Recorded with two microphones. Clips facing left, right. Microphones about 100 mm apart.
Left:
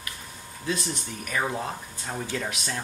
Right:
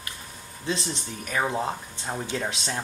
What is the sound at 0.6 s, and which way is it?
Speech, 25° right (ahead or behind).